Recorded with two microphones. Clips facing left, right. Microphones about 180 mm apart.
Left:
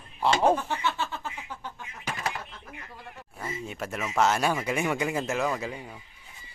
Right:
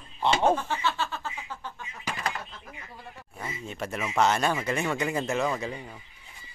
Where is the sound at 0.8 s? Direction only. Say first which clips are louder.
Right 1 dB; 20° left (ahead or behind).